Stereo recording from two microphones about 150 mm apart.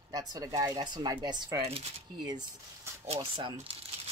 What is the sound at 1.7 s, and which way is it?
Speech, 40° right (ahead or behind).